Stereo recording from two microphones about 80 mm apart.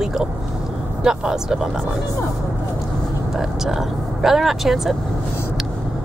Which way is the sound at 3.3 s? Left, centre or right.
Centre.